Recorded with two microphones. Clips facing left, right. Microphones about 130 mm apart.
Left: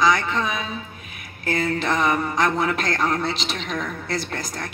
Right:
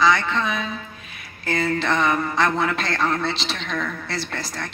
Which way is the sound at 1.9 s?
15° left (ahead or behind).